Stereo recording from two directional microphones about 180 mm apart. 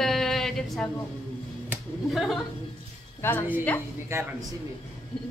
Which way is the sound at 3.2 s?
10° left (ahead or behind).